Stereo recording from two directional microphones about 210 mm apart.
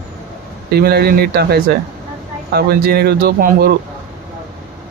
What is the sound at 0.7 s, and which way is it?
Speech, 50° right (ahead or behind).